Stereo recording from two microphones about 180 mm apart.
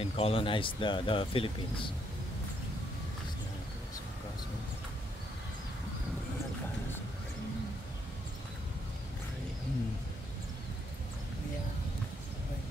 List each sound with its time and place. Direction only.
0.0 s speech: 30° left (ahead or behind)